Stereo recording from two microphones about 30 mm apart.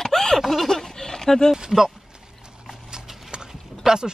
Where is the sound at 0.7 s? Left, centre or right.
Centre.